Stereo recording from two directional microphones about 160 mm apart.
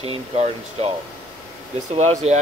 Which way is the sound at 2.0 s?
45° right (ahead or behind).